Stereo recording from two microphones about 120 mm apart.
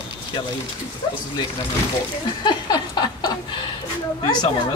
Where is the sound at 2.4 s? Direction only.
40° left (ahead or behind).